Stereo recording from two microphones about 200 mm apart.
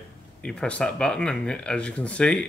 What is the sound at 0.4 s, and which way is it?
Speech, 5° left (ahead or behind).